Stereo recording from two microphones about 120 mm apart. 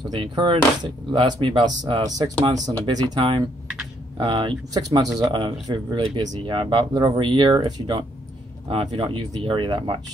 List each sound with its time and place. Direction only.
0.1 s speech: 45° right (ahead or behind)
3.2 s speech: 45° right (ahead or behind)
8.6 s speech: 50° right (ahead or behind)